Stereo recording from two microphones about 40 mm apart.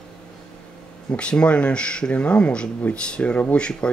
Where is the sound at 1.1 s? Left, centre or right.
Left.